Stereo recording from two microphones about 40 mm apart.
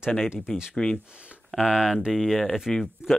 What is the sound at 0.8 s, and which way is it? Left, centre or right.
Speech, centre.